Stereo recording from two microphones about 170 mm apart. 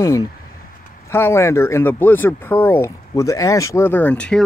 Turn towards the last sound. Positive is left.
turn(degrees=5)  # may be behind; listen again after turning